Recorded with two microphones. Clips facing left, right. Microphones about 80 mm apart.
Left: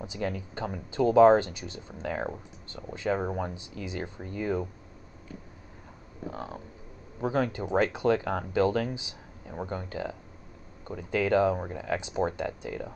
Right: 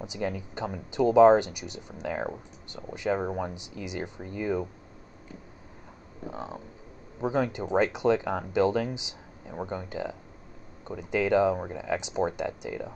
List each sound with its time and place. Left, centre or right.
0.0 s speech: centre
2.7 s speech: centre
3.2 s speech: centre
3.5 s speech: centre
6.3 s speech: centre